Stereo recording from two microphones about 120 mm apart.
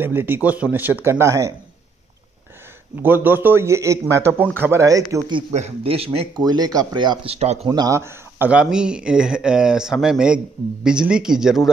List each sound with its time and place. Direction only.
0.0 s speech: 20° right (ahead or behind)
3.0 s a man's voice: 15° right (ahead or behind)
5.5 s speech: 60° right (ahead or behind)
6.3 s speech: 35° right (ahead or behind)
7.2 s speech: 65° right (ahead or behind)
7.6 s speech: 35° right (ahead or behind)
7.9 s speech: 20° right (ahead or behind); by 11.7 s 5° right (ahead or behind)